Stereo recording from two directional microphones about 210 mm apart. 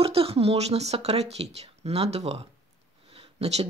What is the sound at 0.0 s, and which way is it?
Speech, 25° right (ahead or behind).